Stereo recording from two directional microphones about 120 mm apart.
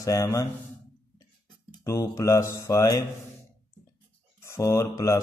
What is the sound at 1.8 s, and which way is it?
Speech, 25° left (ahead or behind).